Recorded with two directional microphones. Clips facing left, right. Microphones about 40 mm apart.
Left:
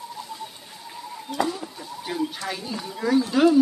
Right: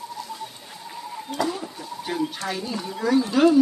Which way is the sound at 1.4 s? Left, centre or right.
Centre.